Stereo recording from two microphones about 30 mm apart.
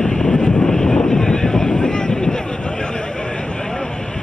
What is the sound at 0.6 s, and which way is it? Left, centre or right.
Vehicle, left.